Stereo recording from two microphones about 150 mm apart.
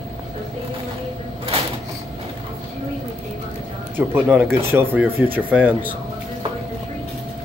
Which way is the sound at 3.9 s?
15° right (ahead or behind).